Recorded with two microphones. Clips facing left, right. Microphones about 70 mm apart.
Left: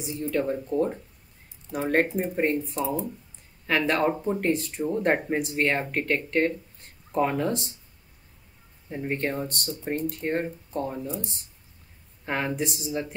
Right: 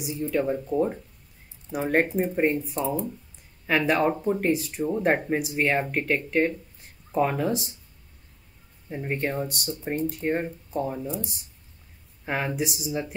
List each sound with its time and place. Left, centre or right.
0.0 s speech: centre
8.8 s speech: centre
12.3 s speech: centre